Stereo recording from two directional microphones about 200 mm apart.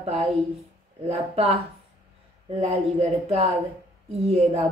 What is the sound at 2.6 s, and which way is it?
Speech, 30° right (ahead or behind).